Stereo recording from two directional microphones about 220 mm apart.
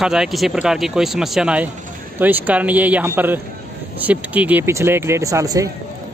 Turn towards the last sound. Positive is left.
turn(degrees=-15)  # may be behind; listen again after turning